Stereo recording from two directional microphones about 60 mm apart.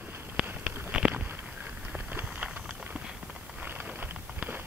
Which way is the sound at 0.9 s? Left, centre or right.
Centre.